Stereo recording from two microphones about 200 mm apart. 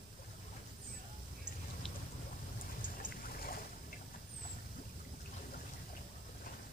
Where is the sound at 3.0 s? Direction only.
45° left (ahead or behind).